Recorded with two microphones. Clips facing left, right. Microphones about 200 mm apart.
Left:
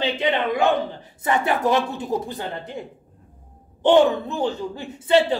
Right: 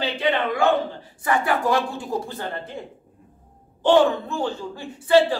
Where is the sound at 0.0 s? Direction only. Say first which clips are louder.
Left 1 dB; 20° left (ahead or behind).